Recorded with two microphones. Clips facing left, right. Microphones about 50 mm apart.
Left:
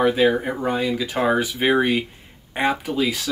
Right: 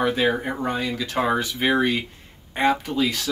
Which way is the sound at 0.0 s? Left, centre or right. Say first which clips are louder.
Left 4 dB; centre.